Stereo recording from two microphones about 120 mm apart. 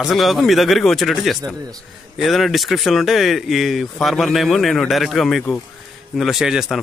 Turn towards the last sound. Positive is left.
turn(degrees=-5)  # may be behind; listen again after turning